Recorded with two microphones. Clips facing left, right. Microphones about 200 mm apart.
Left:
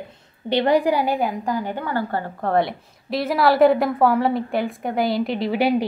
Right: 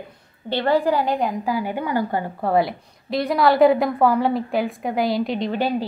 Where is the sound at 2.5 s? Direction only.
Centre (ahead or behind).